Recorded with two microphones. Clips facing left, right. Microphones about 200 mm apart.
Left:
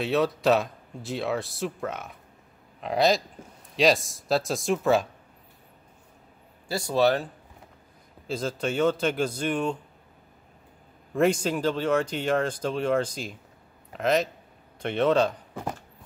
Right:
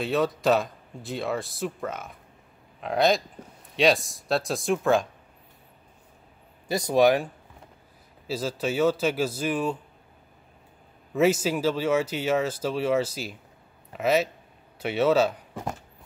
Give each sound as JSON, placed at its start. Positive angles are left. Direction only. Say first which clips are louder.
{"t": 0.0, "sound": "speech", "louder": "left 1 dB", "side_deg": 0}
{"t": 6.7, "sound": "speech", "louder": "right 3 dB", "side_deg": -15}
{"t": 8.3, "sound": "speech", "louder": "right 1 dB", "side_deg": -5}
{"t": 11.1, "sound": "speech", "louder": "right 1 dB", "side_deg": -5}